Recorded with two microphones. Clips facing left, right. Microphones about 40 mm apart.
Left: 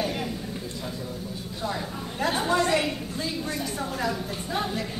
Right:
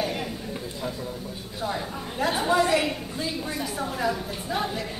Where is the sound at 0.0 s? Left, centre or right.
Centre.